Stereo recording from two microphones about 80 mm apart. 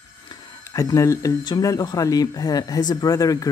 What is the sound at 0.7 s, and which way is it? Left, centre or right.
Speech, left.